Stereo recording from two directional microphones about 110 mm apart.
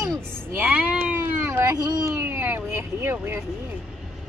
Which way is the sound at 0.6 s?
15° right (ahead or behind).